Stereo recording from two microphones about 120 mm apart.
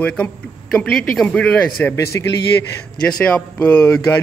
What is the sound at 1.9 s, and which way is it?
Speech, 20° left (ahead or behind).